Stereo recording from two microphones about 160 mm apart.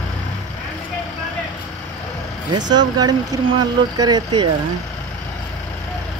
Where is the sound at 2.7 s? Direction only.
25° right (ahead or behind).